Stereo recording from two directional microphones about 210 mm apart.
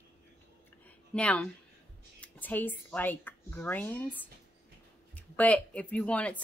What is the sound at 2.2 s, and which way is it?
Speech, 10° left (ahead or behind).